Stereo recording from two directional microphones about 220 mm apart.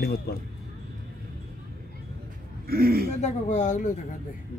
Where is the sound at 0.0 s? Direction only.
45° left (ahead or behind).